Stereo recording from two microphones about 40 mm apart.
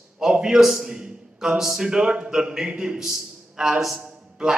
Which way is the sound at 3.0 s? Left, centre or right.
Centre.